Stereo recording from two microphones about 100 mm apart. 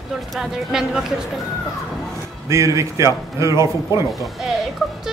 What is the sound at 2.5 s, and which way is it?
A man's voice, 30° right (ahead or behind).